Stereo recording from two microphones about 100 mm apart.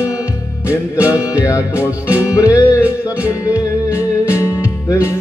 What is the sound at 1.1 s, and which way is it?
Music, 30° left (ahead or behind).